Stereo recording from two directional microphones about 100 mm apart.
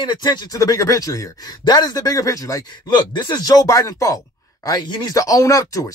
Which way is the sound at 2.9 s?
50° left (ahead or behind).